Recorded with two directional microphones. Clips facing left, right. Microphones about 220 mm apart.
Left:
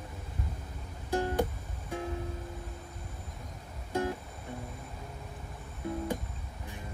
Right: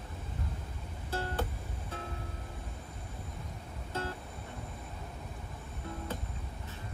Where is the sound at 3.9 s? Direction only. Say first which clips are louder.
Left 7 dB; 15° left (ahead or behind).